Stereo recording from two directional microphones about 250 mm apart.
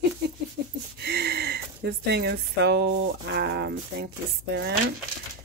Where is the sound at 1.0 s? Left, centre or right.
Right.